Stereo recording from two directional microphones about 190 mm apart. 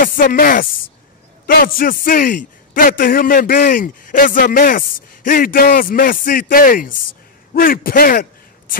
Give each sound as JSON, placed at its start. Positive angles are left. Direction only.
{"t": 0.0, "sound": "a man's voice", "side_deg": 50}